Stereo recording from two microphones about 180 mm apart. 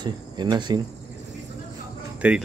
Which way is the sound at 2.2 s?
5° right (ahead or behind).